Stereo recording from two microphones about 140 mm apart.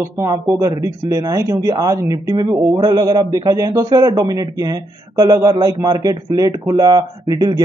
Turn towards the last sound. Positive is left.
turn(degrees=-25)  # may be behind; listen again after turning